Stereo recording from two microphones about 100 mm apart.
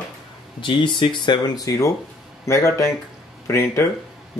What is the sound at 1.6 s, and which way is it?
Speech, 35° left (ahead or behind).